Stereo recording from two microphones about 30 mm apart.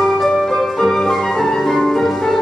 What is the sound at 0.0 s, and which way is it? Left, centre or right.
Music, centre.